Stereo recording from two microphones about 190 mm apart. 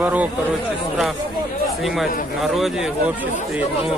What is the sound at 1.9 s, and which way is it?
Speech, centre (ahead or behind).